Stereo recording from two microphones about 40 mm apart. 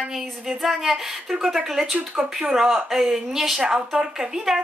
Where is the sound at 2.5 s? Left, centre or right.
Centre.